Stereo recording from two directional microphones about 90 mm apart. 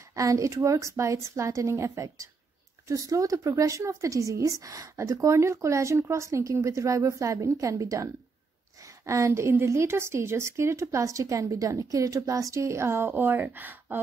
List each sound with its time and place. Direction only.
0.1 s a woman's voice: 35° right (ahead or behind); by 13.9 s 20° right (ahead or behind)